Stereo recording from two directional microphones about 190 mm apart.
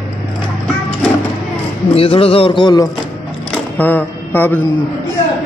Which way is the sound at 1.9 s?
30° left (ahead or behind).